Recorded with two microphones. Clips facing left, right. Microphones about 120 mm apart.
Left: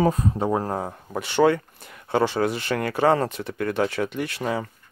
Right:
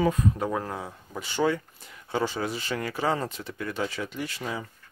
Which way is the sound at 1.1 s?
65° left (ahead or behind).